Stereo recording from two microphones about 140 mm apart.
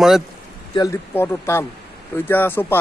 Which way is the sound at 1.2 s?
20° left (ahead or behind).